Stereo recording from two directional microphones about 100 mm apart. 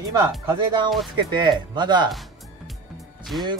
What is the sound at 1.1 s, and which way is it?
Speech, 50° right (ahead or behind).